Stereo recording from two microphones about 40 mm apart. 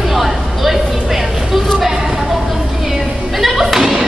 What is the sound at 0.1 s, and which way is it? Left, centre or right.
Vehicle, centre.